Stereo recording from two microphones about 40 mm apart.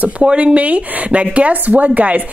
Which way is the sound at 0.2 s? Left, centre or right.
Right.